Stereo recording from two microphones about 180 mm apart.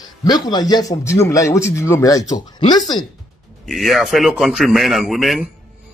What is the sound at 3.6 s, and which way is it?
A man's voice, centre (ahead or behind).